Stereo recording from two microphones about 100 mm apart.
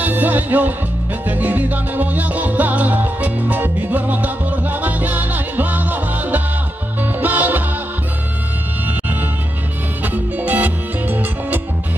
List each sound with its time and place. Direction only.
0.0 s music: 15° right (ahead or behind)
8.8 s music: 15° right (ahead or behind)